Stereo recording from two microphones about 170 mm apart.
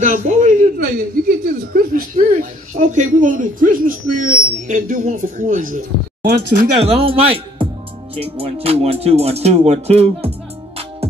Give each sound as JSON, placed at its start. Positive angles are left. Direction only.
{"t": 0.0, "sound": "speech", "side_deg": -45}
{"t": 6.8, "sound": "music", "side_deg": -35}